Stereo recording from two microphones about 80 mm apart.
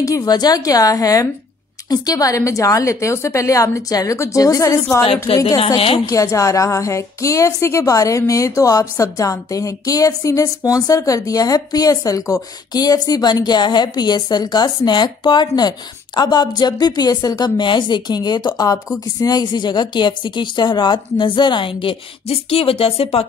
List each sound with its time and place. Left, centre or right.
0.0 s a woman's voice: left
5.3 s a woman's voice: left